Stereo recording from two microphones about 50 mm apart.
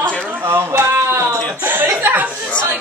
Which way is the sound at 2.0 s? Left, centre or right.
Right.